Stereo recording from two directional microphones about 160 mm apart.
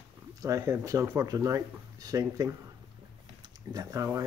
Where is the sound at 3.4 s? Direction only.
25° right (ahead or behind).